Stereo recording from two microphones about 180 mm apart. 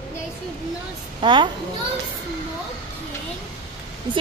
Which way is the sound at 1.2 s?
25° right (ahead or behind).